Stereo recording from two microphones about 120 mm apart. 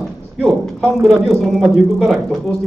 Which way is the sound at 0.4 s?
5° left (ahead or behind).